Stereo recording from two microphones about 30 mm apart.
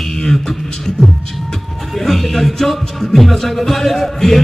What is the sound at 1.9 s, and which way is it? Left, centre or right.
Music, centre.